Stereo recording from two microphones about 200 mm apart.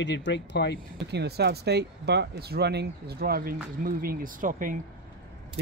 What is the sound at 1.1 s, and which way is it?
Speech, 55° right (ahead or behind).